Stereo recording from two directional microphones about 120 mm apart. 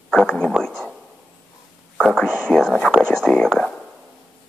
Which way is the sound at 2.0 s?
5° left (ahead or behind).